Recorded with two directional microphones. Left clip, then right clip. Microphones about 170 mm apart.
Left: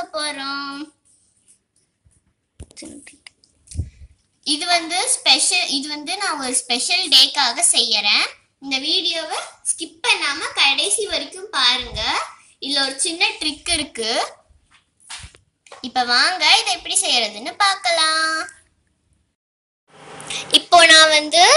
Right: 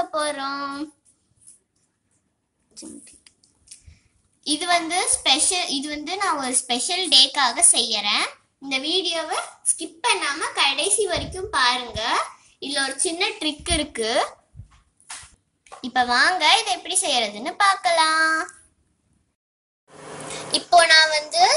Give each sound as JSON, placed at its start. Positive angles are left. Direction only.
{"t": 0.0, "sound": "child singing", "side_deg": -10}
{"t": 2.7, "sound": "a sound", "side_deg": 0}
{"t": 4.4, "sound": "a woman's voice", "side_deg": -15}
{"t": 15.6, "sound": "a woman's voice", "side_deg": -20}
{"t": 20.2, "sound": "a woman's voice", "side_deg": -10}